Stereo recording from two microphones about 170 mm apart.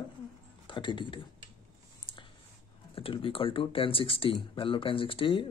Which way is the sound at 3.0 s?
30° left (ahead or behind).